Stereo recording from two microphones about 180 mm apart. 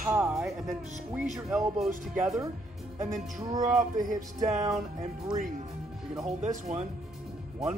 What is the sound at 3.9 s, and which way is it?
Music, 45° right (ahead or behind).